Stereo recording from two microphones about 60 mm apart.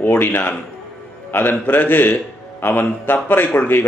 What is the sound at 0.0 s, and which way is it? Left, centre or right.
A man's voice, left.